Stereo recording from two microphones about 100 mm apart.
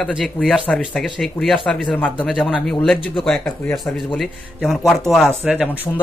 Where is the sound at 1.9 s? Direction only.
15° left (ahead or behind).